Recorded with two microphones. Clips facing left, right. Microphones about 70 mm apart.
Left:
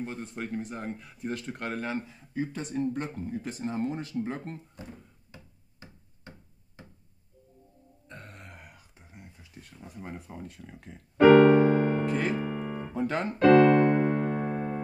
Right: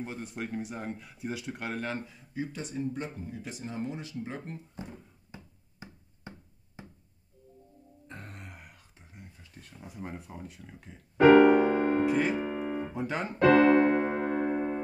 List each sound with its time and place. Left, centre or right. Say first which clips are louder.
0.0 s speech: left 1 dB; centre
2.3 s speech: left 3 dB; left
2.8 s speech: left 4 dB; left
5.3 s a sound: right 3 dB; centre
8.1 s a sound: even; centre
8.9 s a sound: left 1 dB; centre
9.5 s speech: left 1 dB; centre
11.1 s piano: left 1 dB; centre
13.6 s music: left 2 dB; centre